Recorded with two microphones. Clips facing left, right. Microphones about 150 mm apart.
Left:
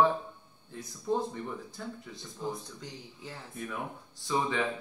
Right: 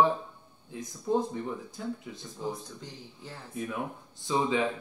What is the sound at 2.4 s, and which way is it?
Speech, centre (ahead or behind).